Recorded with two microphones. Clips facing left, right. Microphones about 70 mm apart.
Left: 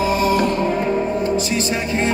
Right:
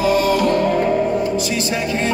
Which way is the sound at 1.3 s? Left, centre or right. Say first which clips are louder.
Even; left.